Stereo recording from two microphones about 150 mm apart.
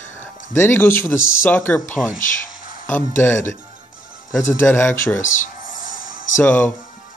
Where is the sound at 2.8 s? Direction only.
10° left (ahead or behind).